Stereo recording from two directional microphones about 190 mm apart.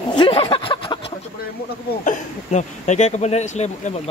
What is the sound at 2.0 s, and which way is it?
Speech, 40° left (ahead or behind).